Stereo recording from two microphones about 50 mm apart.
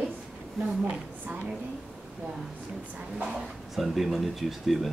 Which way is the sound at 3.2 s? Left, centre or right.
Centre.